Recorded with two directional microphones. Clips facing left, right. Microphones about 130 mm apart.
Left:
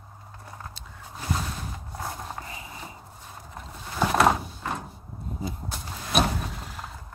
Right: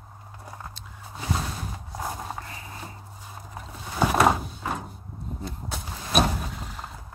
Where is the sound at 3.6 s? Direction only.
5° right (ahead or behind).